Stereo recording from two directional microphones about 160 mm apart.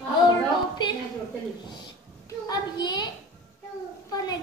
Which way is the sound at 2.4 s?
25° left (ahead or behind).